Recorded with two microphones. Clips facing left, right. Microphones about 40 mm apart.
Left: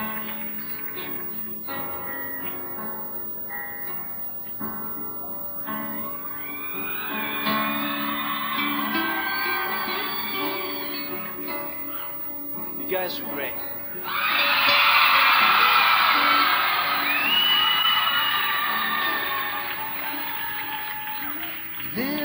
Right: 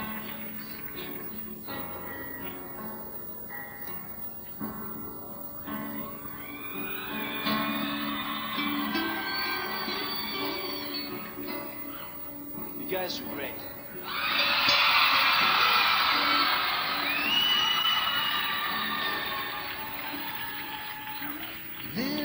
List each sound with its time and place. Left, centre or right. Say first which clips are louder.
1.7 s music: left 6 dB; left
5.7 s music: left 4 dB; left
12.8 s speech: left 5 dB; left
14.0 s music: left 5 dB; left
21.9 s a sound: left 4 dB; left